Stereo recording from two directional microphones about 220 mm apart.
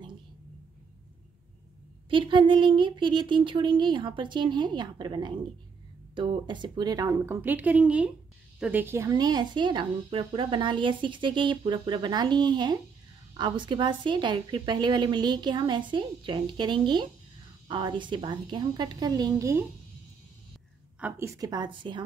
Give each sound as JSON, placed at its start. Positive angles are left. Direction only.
{"t": 2.0, "sound": "a woman's voice", "side_deg": -20}
{"t": 21.0, "sound": "a woman's voice", "side_deg": -15}